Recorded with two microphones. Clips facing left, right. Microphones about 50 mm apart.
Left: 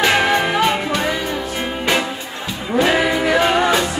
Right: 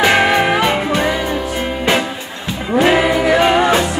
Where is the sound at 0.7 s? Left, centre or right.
Right.